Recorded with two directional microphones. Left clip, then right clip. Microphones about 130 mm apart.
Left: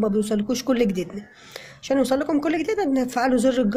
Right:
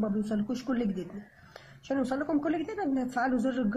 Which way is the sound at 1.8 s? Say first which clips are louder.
Left 10 dB; 15° left (ahead or behind).